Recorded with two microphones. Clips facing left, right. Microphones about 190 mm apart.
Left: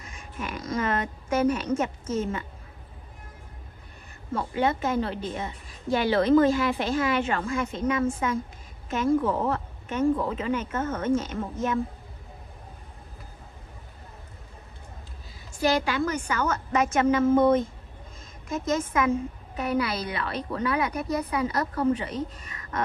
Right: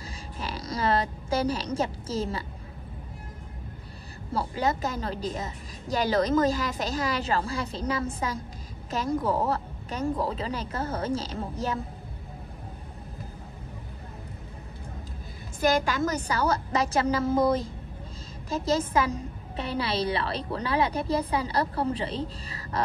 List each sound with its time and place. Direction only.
0.0 s speech: 35° right (ahead or behind)
4.3 s a woman's voice: 35° right (ahead or behind)
15.6 s a woman's voice: 45° right (ahead or behind)